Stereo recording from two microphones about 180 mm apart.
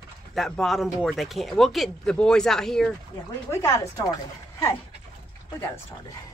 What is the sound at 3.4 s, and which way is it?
Speech, 15° left (ahead or behind).